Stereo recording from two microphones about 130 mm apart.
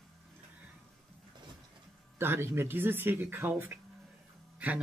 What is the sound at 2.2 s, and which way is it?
Speech, 20° right (ahead or behind).